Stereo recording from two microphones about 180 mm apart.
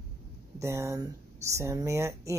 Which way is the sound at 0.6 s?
15° right (ahead or behind).